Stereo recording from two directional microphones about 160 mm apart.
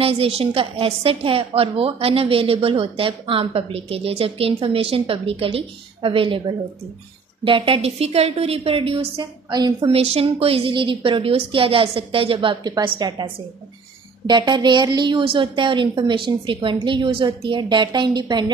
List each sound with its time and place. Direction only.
0.0 s a woman's voice: 35° right (ahead or behind)
9.8 s a woman's voice: 40° right (ahead or behind)